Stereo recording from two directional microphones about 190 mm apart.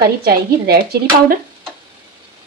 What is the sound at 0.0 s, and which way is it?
Speech, 55° right (ahead or behind).